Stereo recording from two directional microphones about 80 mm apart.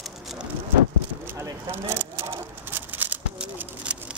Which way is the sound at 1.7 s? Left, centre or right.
Right.